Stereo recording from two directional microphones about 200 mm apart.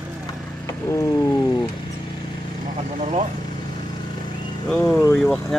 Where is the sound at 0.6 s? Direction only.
15° left (ahead or behind).